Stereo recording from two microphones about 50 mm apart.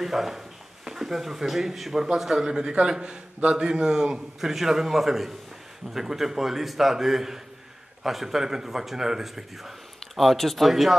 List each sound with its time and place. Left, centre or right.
0.0 s a man's voice: centre